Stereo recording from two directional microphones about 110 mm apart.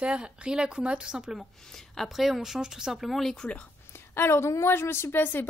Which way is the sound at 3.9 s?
20° left (ahead or behind).